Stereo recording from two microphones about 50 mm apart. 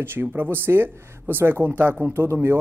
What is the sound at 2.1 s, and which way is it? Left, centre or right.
Speech, right.